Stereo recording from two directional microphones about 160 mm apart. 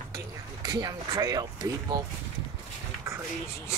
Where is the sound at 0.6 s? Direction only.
25° right (ahead or behind).